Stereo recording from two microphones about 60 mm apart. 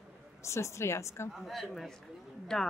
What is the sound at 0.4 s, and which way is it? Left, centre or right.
Speech, left.